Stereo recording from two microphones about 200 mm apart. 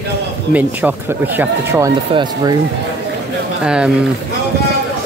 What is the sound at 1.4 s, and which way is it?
Speech, 15° right (ahead or behind).